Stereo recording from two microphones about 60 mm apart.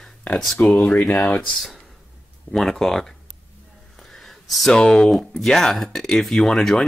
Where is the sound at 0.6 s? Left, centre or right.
Left.